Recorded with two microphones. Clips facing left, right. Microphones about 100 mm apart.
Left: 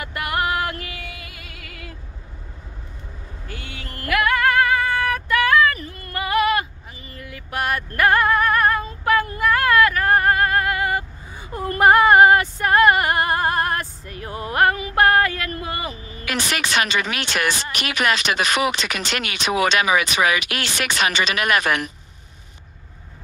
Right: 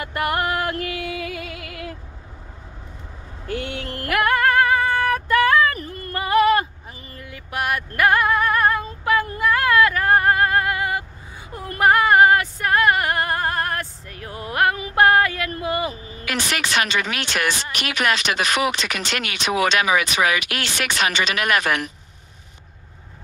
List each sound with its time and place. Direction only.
0.0 s music: 40° right (ahead or behind)
0.8 s music: 80° right
1.6 s female singing: 65° right (ahead or behind)
3.4 s a sound: 65° right (ahead or behind)
4.1 s female singing: 40° right (ahead or behind)
5.8 s music: 45° right (ahead or behind)
6.2 s a sound: 30° right (ahead or behind)
7.2 s music: 20° right (ahead or behind)
9.4 s female singing: 20° right (ahead or behind)
11.5 s female singing: 5° right (ahead or behind)
15.0 s a sound: 15° right (ahead or behind)
15.6 s vehicle: 15° right (ahead or behind)
16.3 s speech: 20° left (ahead or behind)